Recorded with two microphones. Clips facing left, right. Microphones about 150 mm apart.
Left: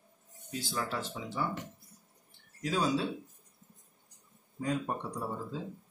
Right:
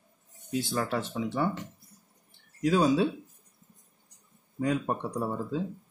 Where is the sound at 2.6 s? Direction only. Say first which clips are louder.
Right 7 dB; 60° right (ahead or behind).